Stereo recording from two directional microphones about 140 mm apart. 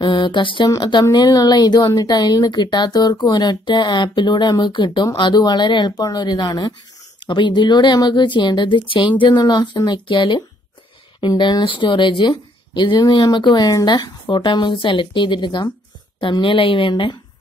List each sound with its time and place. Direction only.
0.0 s a woman's voice: 35° left (ahead or behind)